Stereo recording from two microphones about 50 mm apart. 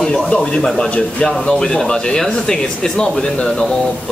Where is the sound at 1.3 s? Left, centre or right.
Centre.